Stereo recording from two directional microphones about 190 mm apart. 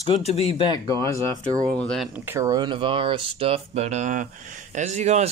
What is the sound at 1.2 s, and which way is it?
Speech, 30° right (ahead or behind).